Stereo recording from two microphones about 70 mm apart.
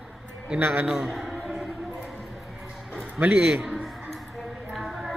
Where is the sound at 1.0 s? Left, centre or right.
Centre.